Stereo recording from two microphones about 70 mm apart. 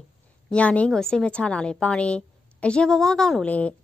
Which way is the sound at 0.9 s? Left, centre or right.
Centre.